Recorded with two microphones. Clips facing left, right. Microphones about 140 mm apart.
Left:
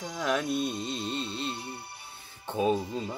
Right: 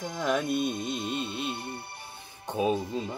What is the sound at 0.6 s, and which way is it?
Music, 20° right (ahead or behind).